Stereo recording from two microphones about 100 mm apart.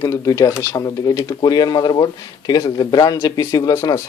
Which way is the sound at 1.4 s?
40° left (ahead or behind).